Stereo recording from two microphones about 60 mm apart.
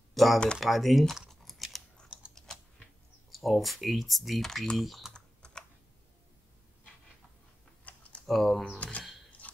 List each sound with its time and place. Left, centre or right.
0.1 s typing: centre
0.6 s speech: centre
1.3 s scissors: centre
3.3 s speech: centre
5.1 s computer keyboard: centre
7.9 s typing: left
8.3 s speech: centre
8.7 s a sound: left